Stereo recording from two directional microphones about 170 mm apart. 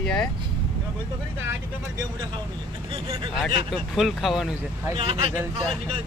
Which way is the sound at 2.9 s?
30° right (ahead or behind).